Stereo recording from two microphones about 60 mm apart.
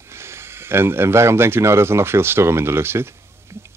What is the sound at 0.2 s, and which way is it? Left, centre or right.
Speech, right.